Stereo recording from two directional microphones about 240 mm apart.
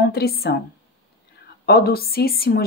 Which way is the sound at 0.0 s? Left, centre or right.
Left.